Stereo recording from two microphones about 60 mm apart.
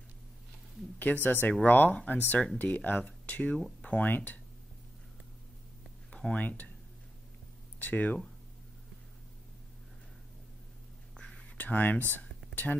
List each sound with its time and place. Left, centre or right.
0.9 s speech: left
6.3 s speech: left
7.8 s speech: left
11.1 s a sound: centre
11.5 s speech: left
12.1 s a sound: left